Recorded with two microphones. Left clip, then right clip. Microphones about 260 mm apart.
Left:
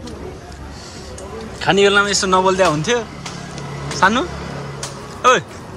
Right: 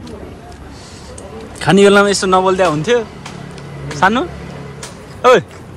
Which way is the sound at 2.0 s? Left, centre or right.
Centre.